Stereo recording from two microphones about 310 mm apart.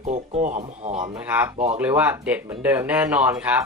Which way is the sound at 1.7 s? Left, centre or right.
Centre.